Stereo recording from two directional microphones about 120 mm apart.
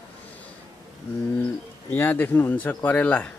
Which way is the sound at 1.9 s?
15° left (ahead or behind).